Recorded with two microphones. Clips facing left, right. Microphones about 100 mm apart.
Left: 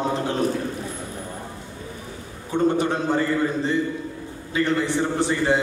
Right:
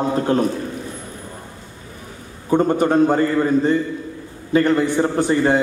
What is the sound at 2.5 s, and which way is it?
A man's voice, 50° right (ahead or behind).